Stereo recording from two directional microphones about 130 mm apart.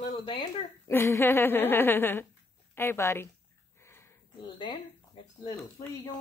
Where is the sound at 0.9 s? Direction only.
20° left (ahead or behind).